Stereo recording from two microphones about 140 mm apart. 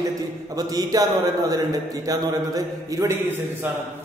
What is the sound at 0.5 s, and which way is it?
A man's voice, 25° right (ahead or behind).